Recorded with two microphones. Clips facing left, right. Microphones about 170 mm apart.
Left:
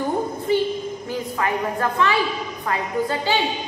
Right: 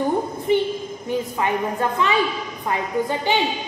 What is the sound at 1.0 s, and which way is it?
A woman's voice, 20° right (ahead or behind).